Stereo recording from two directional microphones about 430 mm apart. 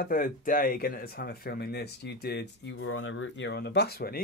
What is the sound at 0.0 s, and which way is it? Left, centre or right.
Speech, centre.